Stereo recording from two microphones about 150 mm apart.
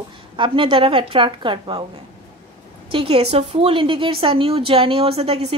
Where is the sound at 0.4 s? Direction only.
35° right (ahead or behind).